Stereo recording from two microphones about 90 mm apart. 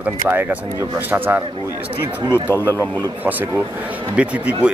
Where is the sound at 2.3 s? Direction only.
25° left (ahead or behind).